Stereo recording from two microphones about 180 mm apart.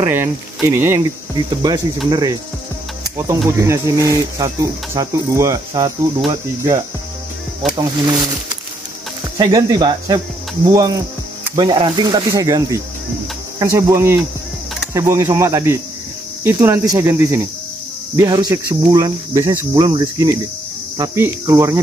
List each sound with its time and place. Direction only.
0.0 s speech: 10° right (ahead or behind)
2.0 s cricket: 25° right (ahead or behind)
3.4 s speech: 15° right (ahead or behind)
7.7 s cricket: 20° right (ahead or behind)
9.4 s cricket: 20° right (ahead or behind)
13.6 s speech: 15° right (ahead or behind)
18.1 s cricket: 20° right (ahead or behind)
21.0 s speech: 15° right (ahead or behind)